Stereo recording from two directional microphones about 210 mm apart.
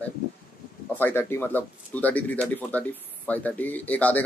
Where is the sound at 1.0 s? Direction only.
10° left (ahead or behind).